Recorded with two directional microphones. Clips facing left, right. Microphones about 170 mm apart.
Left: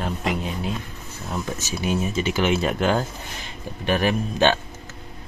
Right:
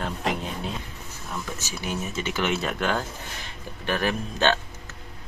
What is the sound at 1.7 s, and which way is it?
Speech, 15° left (ahead or behind).